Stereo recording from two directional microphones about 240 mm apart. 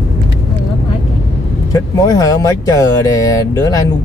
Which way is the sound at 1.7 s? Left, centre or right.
Centre.